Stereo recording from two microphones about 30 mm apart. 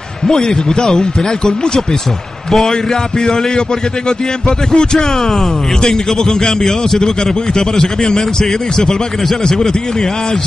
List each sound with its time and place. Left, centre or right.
0.3 s speech: left
4.5 s speech: left
6.4 s a man's voice: centre